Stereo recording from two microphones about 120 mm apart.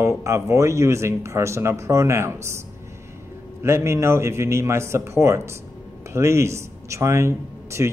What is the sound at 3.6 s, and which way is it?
A man's voice, 25° right (ahead or behind).